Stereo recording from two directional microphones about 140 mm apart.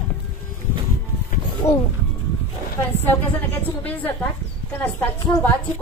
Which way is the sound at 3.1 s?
15° left (ahead or behind).